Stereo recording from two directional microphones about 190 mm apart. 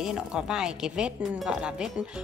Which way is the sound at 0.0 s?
5° right (ahead or behind).